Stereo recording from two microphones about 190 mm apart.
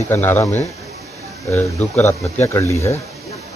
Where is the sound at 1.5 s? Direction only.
15° left (ahead or behind).